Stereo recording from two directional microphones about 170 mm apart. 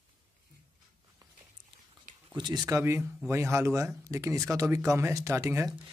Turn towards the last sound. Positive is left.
turn(degrees=-15)  # may be behind; listen again after turning